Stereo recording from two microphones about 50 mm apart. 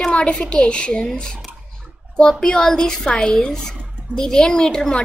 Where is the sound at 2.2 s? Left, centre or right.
Centre.